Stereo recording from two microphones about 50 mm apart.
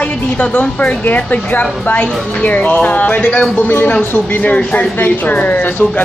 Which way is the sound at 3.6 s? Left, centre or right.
Left.